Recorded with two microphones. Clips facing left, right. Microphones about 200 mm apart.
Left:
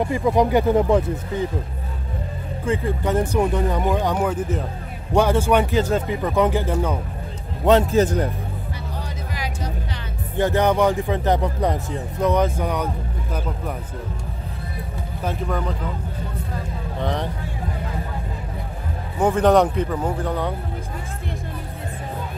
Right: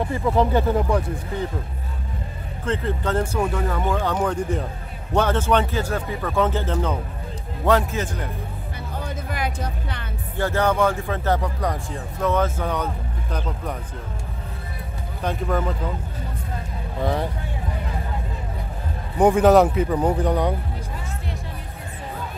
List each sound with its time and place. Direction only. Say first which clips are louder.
0.0 s speech: left 2 dB; 15° left (ahead or behind)
2.6 s speech: left 2 dB; 10° left (ahead or behind)
7.9 s a man's voice: left 10 dB; 40° left (ahead or behind)
8.9 s music: right 6 dB; 55° right (ahead or behind)
10.3 s speech: left 3 dB; 15° left (ahead or behind)
15.2 s speech: right 2 dB; centre (ahead or behind)
17.0 s speech: right 2 dB; 5° right (ahead or behind)
19.1 s a man's voice: right 3 dB; 15° right (ahead or behind)
19.4 s speech: left 2 dB; 5° right (ahead or behind)
20.0 s speech: right 3 dB; 15° right (ahead or behind)